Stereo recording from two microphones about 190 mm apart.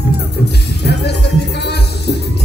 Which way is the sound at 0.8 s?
60° left (ahead or behind).